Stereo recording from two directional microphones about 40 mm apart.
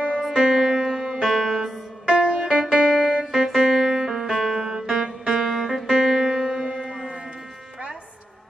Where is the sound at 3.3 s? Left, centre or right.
Centre.